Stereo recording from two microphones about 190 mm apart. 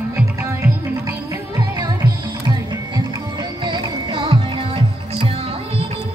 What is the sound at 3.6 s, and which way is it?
Music, 30° right (ahead or behind).